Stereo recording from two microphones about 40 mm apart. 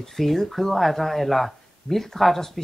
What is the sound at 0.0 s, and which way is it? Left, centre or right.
Speech, centre.